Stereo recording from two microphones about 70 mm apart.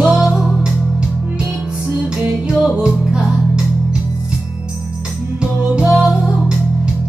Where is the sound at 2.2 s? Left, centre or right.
Centre.